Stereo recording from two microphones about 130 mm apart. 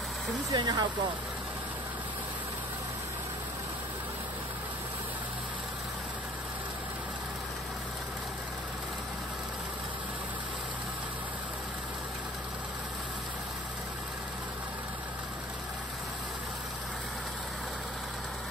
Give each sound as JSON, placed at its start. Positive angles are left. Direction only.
{"t": 0.5, "sound": "speech", "side_deg": -30}